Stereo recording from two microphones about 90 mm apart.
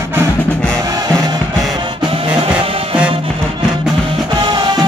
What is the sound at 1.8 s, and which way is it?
Music, 75° right (ahead or behind).